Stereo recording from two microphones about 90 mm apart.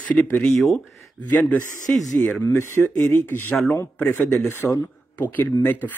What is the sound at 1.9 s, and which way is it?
Speech, centre (ahead or behind).